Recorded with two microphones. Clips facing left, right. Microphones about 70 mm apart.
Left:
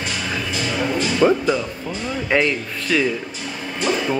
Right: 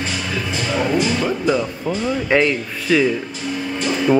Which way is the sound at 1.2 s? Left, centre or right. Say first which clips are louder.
Left 6 dB; left.